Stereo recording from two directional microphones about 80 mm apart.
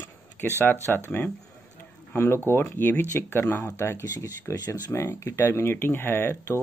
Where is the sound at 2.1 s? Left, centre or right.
Left.